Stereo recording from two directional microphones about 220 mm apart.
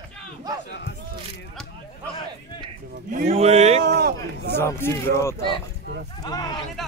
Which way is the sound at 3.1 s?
35° right (ahead or behind).